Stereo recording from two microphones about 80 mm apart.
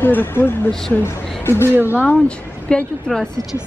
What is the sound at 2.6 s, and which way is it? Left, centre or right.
Speech, centre.